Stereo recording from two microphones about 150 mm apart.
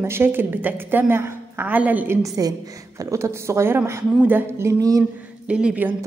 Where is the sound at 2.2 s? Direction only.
20° right (ahead or behind).